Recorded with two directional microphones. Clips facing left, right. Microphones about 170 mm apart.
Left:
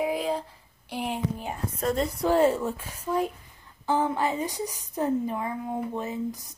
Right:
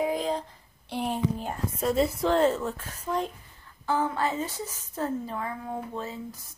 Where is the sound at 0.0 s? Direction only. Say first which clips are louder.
Even; 5° left (ahead or behind).